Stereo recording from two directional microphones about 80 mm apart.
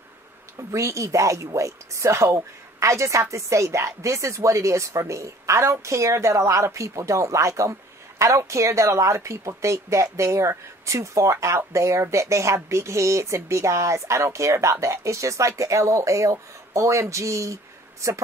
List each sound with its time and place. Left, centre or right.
0.6 s a woman's voice: right